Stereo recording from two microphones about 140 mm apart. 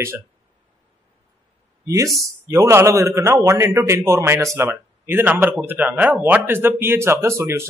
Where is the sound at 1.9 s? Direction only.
20° right (ahead or behind).